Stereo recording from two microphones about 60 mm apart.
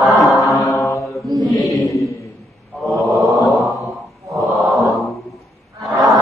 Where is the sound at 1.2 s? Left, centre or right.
Right.